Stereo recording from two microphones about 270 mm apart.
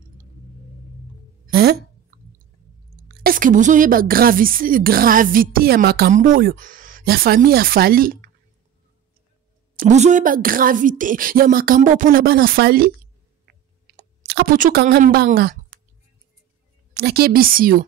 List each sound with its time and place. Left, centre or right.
1.4 s a sound: right
3.1 s a woman's voice: right
9.8 s a woman's voice: right
13.5 s clicking: right
16.9 s a woman's voice: right